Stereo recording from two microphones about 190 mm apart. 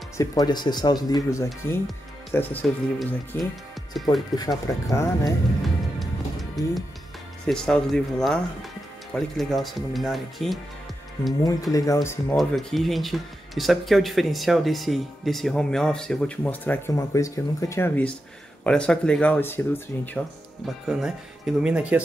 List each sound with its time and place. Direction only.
0.2 s speech: 20° left (ahead or behind); by 4.1 s centre (ahead or behind)
4.4 s speech: 20° left (ahead or behind)
5.9 s music: centre (ahead or behind)
7.4 s speech: 5° left (ahead or behind)
11.7 s speech: 15° left (ahead or behind)
12.4 s speech: centre (ahead or behind)
20.6 s speech: 5° right (ahead or behind)